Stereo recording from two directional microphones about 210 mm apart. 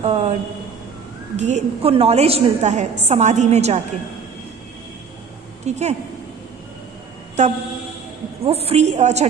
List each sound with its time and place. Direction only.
0.0 s a man's voice: 30° right (ahead or behind)
5.7 s a woman's voice: 30° right (ahead or behind)
7.4 s a woman's voice: 35° right (ahead or behind)